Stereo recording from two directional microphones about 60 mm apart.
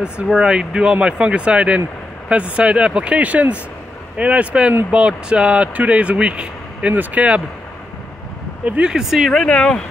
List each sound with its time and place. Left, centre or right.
0.4 s speech: centre
8.6 s speech: centre
9.5 s speech: centre